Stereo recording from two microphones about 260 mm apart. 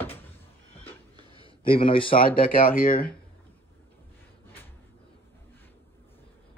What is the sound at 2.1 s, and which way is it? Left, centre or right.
Speech, left.